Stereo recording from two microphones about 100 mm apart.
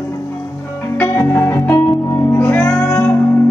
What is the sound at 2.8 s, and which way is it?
Music, 20° left (ahead or behind).